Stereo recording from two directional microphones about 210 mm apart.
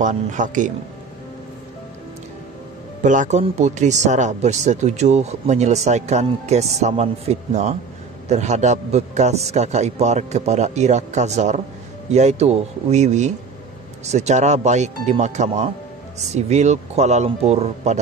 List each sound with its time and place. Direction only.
0.0 s a man's voice: 35° right (ahead or behind)
3.0 s a man's voice: 35° right (ahead or behind)